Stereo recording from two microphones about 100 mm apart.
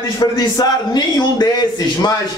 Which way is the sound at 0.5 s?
45° left (ahead or behind).